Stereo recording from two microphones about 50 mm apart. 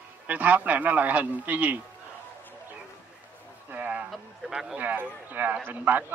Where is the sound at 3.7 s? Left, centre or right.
Right.